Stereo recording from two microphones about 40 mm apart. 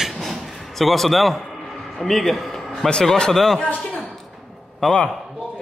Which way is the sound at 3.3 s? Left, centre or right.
Centre.